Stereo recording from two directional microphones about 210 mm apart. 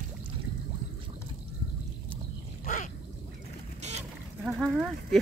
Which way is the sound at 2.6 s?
35° left (ahead or behind).